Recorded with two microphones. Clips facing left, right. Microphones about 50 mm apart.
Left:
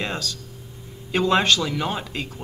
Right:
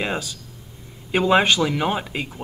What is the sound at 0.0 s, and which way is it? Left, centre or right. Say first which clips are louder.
Speech: right 2 dB; centre.